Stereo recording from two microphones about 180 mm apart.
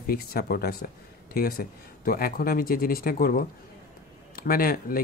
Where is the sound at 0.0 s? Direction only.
55° left (ahead or behind).